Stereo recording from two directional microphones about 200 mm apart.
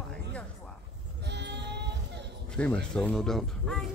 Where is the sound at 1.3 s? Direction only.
60° right (ahead or behind).